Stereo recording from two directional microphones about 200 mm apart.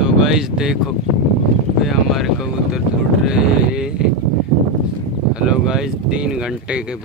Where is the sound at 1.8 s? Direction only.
Centre (ahead or behind).